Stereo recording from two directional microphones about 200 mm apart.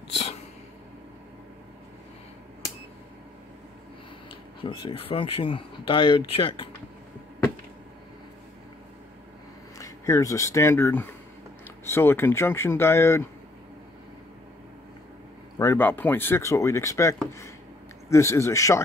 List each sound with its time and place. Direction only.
4.6 s speech: 25° left (ahead or behind)
9.8 s speech: 15° left (ahead or behind)
15.6 s speech: 10° left (ahead or behind)